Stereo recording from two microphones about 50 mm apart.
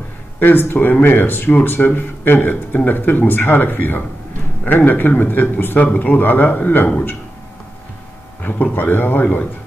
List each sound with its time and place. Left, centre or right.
0.4 s speech: left
8.4 s a sound: left
8.7 s speech: left